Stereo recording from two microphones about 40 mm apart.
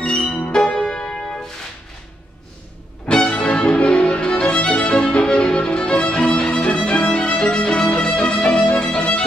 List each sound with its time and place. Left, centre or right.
0.0 s music: left
3.1 s music: left
7.3 s violin: left
7.9 s music: centre